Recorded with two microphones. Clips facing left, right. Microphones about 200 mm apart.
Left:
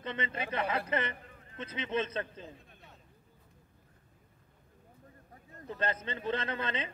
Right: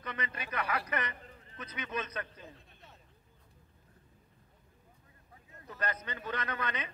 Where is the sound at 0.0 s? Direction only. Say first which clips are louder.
Left 4 dB; 25° left (ahead or behind).